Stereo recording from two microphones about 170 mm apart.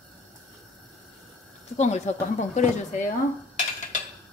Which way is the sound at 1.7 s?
40° left (ahead or behind).